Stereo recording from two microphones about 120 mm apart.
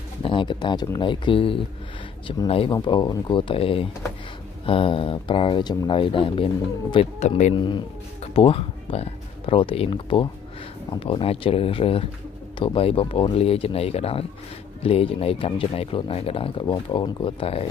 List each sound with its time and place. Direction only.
0.2 s speech: 45° left (ahead or behind); by 7.5 s 70° left (ahead or behind)
7.5 s speech: 40° left (ahead or behind)
8.4 s speech: 50° left (ahead or behind)